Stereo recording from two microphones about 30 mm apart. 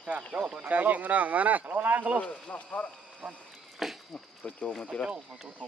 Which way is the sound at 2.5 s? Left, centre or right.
Left.